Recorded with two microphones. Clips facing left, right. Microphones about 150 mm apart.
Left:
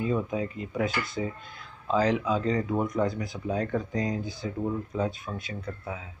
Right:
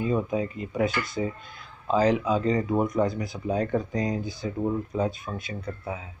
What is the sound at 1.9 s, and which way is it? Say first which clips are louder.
Speech: right 3 dB; 15° right (ahead or behind).